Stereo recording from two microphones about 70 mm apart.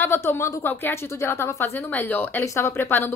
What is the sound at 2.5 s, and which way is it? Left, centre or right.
Speech, left.